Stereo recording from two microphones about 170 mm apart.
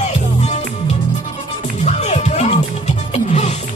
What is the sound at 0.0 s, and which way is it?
Music, 45° left (ahead or behind).